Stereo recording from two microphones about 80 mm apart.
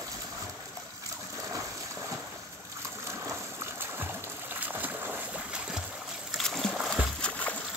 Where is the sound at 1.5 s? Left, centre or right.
Right.